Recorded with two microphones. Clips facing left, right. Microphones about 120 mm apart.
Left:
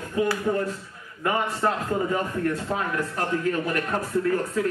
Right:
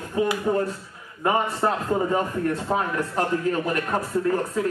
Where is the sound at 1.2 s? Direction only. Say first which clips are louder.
Right 2 dB; 30° right (ahead or behind).